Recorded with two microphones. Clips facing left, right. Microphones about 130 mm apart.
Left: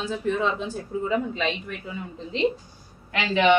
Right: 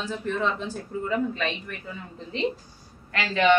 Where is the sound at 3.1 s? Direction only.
15° left (ahead or behind).